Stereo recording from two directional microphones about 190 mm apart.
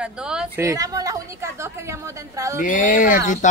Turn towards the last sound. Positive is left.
turn(degrees=40)  # may be behind; listen again after turning